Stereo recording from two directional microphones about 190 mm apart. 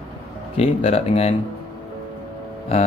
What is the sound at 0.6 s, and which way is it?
Speech, 30° left (ahead or behind).